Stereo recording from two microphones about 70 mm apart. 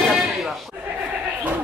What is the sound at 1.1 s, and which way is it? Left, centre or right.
Bleat, right.